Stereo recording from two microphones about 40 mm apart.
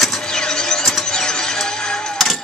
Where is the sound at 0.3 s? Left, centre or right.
Centre.